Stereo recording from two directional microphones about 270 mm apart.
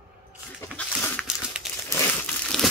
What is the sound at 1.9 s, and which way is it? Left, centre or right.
Crumpling, centre.